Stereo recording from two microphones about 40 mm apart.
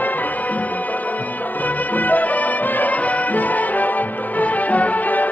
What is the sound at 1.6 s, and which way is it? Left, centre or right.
Music, left.